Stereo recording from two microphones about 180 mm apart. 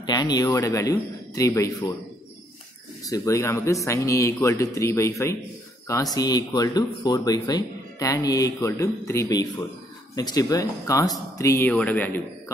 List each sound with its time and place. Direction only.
0.0 s speech: 25° left (ahead or behind)
3.0 s speech: 20° left (ahead or behind)